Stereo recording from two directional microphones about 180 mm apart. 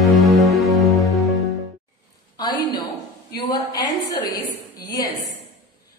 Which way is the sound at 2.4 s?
25° left (ahead or behind).